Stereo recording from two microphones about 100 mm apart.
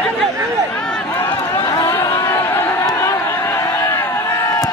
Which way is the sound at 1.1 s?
25° left (ahead or behind).